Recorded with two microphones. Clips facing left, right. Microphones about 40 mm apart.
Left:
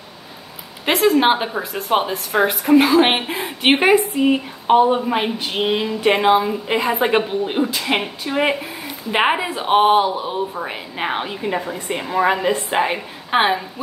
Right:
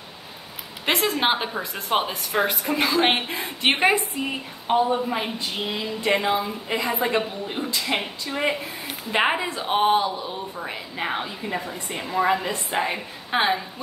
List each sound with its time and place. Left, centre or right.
0.8 s a woman's voice: centre; by 4.7 s left
4.7 s a woman's voice: left
9.1 s a woman's voice: centre; by 12.9 s left
12.9 s speech: left